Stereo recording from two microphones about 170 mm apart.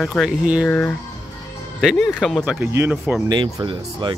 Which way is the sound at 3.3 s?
25° right (ahead or behind).